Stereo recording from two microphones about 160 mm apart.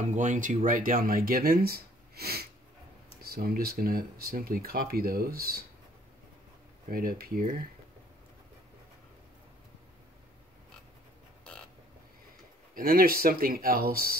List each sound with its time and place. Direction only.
0.1 s speech: 50° right (ahead or behind); by 5.6 s 70° right (ahead or behind)
6.9 s speech: 65° right (ahead or behind)
12.7 s speech: 65° right (ahead or behind)